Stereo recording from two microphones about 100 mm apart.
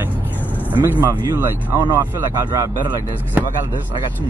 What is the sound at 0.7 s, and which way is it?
Speech, 20° right (ahead or behind).